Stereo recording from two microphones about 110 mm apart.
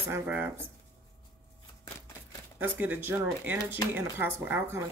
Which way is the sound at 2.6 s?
15° right (ahead or behind).